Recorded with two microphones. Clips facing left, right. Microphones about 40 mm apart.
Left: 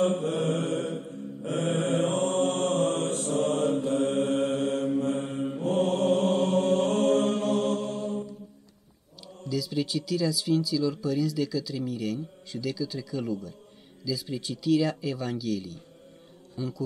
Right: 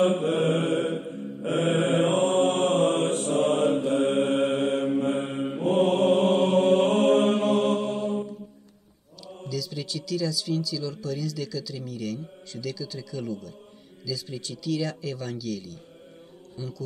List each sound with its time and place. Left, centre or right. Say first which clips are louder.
0.0 s mantra: right 3 dB; right
9.5 s a man's voice: left 4 dB; centre